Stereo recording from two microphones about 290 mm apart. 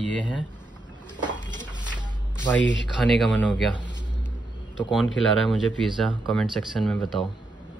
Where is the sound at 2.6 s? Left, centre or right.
Left.